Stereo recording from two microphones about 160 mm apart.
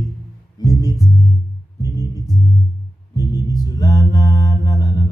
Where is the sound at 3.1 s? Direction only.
25° left (ahead or behind).